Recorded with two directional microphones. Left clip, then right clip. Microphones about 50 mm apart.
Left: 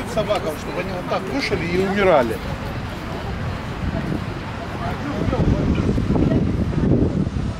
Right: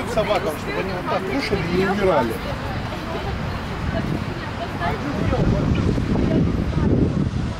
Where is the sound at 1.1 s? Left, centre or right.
Centre.